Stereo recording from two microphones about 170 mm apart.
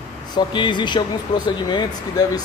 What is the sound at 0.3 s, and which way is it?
Speech, 25° left (ahead or behind).